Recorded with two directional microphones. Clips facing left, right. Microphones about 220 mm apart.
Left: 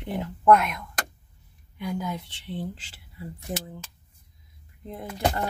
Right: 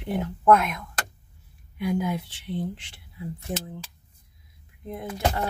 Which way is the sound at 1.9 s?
20° right (ahead or behind).